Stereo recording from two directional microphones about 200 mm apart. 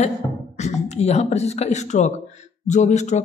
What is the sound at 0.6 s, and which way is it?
A woman's voice, 35° left (ahead or behind).